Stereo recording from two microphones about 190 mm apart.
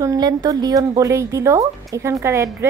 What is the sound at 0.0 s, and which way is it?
A woman's voice, 20° right (ahead or behind).